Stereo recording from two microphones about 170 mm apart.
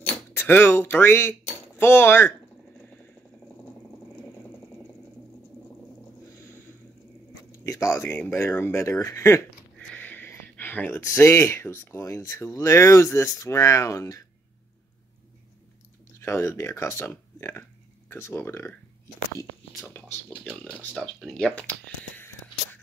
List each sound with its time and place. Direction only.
0.3 s speech: 10° left (ahead or behind)
7.5 s speech: 20° left (ahead or behind)
16.2 s speech: 15° left (ahead or behind)
20.5 s speech: 5° left (ahead or behind)